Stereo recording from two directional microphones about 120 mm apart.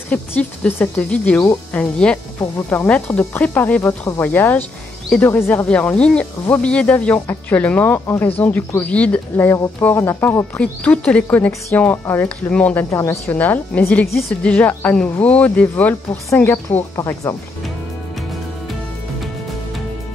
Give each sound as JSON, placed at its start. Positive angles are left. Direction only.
{"t": 0.1, "sound": "speech", "side_deg": 15}
{"t": 10.6, "sound": "speech", "side_deg": 10}